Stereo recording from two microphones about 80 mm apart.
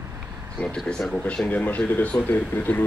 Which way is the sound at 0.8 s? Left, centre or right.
Centre.